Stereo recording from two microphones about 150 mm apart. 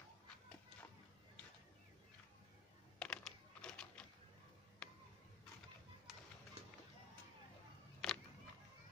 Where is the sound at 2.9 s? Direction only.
5° left (ahead or behind).